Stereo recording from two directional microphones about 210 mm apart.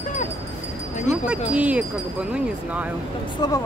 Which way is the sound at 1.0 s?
5° right (ahead or behind).